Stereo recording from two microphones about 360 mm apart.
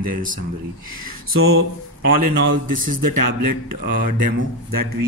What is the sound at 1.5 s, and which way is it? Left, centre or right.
Speech, right.